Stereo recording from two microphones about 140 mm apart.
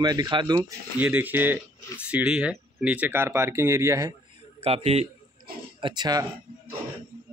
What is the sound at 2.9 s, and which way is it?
A man's voice, 15° right (ahead or behind).